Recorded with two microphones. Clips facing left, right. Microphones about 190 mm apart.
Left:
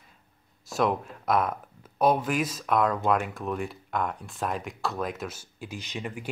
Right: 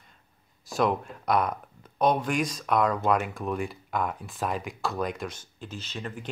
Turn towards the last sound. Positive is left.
turn(degrees=10)  # may be behind; listen again after turning